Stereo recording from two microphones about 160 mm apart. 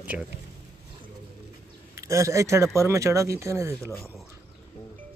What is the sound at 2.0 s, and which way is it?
Speech, 20° right (ahead or behind).